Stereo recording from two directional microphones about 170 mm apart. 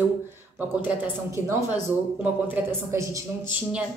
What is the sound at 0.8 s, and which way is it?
Speech, 15° right (ahead or behind).